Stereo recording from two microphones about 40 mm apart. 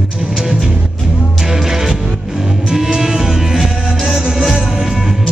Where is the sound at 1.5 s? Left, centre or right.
Centre.